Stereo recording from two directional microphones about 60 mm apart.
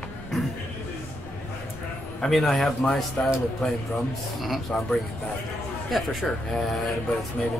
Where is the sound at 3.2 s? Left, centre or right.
Centre.